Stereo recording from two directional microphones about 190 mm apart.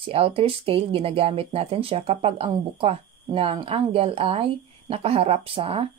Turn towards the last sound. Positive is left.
turn(degrees=-30)  # may be behind; listen again after turning